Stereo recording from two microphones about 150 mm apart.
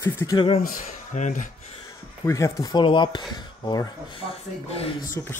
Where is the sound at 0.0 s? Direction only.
20° left (ahead or behind).